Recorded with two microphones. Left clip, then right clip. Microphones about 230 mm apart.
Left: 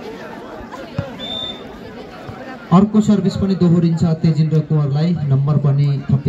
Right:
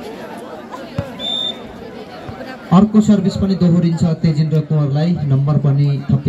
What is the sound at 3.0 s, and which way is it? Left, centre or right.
A man's voice, centre.